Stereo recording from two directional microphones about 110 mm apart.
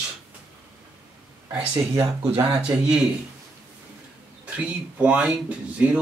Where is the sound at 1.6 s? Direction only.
20° right (ahead or behind).